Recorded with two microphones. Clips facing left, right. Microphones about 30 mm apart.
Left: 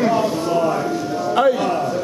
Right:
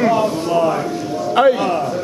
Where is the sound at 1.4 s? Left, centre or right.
Right.